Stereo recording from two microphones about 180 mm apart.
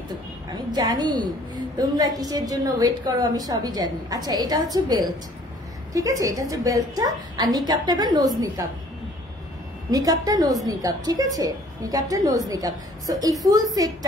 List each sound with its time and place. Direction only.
0.7 s a woman's voice: 20° right (ahead or behind)
9.8 s a woman's voice: 20° right (ahead or behind)